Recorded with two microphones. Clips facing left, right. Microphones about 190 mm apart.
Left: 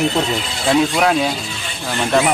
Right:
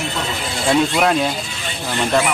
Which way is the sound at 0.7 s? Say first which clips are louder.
Left 1 dB; centre (ahead or behind).